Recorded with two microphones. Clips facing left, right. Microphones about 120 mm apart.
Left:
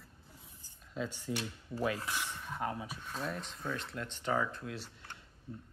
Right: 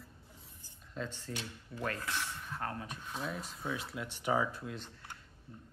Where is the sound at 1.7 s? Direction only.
20° left (ahead or behind).